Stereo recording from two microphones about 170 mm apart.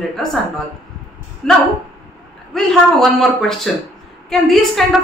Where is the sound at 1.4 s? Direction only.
5° left (ahead or behind).